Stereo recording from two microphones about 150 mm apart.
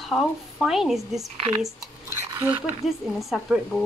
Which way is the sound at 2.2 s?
15° right (ahead or behind).